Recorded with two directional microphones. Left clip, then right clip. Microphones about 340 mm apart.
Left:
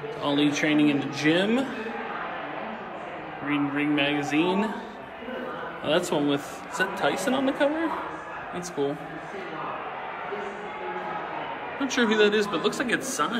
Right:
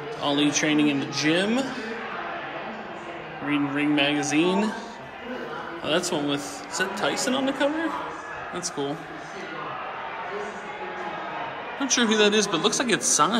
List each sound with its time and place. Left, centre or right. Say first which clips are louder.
0.2 s a man's voice: right 1 dB; centre
3.4 s speech: right 2 dB; centre
5.9 s a man's voice: left 1 dB; centre
11.8 s speech: right 1 dB; centre